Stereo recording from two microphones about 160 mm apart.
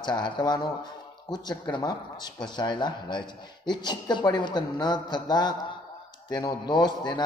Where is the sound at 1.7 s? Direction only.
25° left (ahead or behind).